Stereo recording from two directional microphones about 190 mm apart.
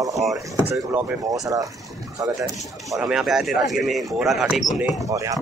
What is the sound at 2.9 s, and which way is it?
Speech, 5° right (ahead or behind).